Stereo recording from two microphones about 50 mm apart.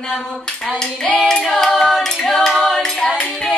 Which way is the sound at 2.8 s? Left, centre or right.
Centre.